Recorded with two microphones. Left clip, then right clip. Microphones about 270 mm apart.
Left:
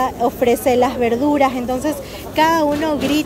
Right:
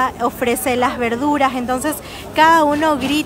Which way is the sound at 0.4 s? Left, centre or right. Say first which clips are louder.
Left 3 dB; centre.